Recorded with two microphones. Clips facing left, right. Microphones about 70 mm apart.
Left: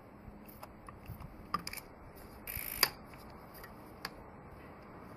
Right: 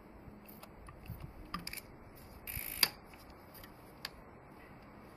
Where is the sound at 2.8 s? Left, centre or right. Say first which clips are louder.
Left 3 dB; centre.